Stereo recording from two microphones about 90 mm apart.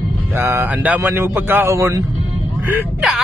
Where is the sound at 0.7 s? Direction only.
15° right (ahead or behind); by 2.0 s 30° right (ahead or behind).